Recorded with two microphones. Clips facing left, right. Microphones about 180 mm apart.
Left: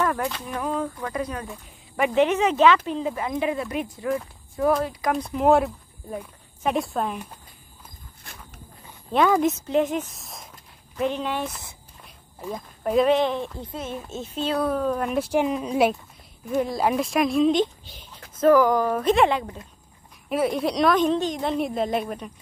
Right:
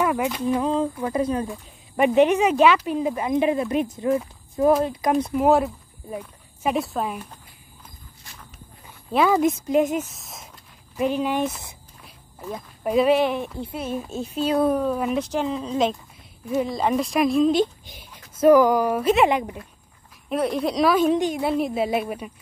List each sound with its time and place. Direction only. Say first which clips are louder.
0.0 s speech: right 3 dB; 10° right (ahead or behind)
0.6 s a woman's voice: right 5 dB; 20° right (ahead or behind)
5.3 s speech: left 2 dB; centre (ahead or behind)
9.1 s a woman's voice: right 1 dB; 5° right (ahead or behind)
12.5 s a woman's voice: even; 5° right (ahead or behind)
14.9 s speech: right 1 dB; 5° right (ahead or behind)
15.1 s speech: left 2 dB; 10° left (ahead or behind)
16.4 s a woman's voice: even; centre (ahead or behind)
20.2 s a woman's voice: even; 5° left (ahead or behind)